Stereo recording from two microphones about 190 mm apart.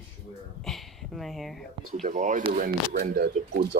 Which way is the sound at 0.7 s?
Centre (ahead or behind).